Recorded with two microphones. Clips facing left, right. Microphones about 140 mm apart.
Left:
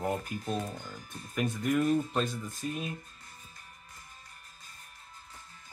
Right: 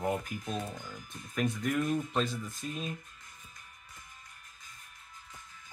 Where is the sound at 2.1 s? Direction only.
Centre (ahead or behind).